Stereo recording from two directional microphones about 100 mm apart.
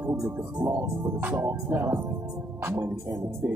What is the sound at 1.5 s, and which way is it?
Speech, 25° right (ahead or behind).